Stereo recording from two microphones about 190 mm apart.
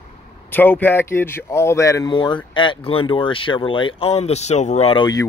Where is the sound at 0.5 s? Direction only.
10° left (ahead or behind).